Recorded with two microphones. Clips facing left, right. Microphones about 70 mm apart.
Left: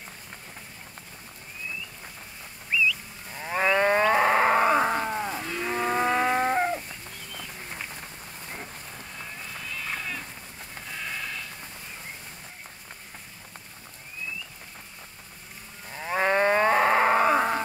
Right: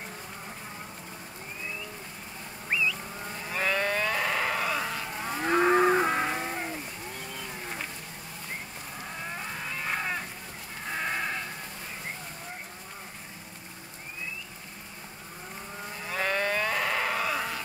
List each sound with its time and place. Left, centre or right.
2.7 s vehicle: right
3.4 s livestock: left
5.4 s moo: right
6.0 s vehicle: left
9.7 s a sound: right
11.0 s sheep: right
16.0 s livestock: left